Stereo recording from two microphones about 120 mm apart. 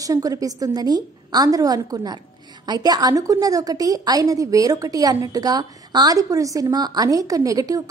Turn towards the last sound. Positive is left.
turn(degrees=-30)  # may be behind; listen again after turning